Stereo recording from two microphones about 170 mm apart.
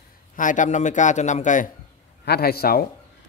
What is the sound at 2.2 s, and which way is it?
Speech, 65° left (ahead or behind).